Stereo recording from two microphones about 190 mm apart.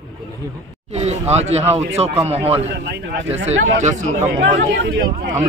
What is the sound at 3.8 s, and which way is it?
Speech, 40° right (ahead or behind).